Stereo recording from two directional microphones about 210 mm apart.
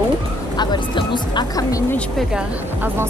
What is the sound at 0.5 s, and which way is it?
Speech, 20° left (ahead or behind).